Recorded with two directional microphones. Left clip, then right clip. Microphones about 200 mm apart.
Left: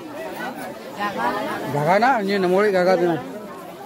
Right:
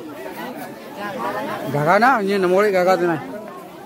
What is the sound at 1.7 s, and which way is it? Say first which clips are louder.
Speech: right 2 dB; 20° right (ahead or behind).